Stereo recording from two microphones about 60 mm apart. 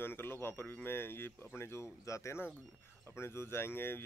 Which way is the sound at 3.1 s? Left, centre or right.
Left.